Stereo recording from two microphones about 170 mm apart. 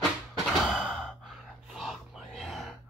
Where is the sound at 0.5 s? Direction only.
Centre (ahead or behind).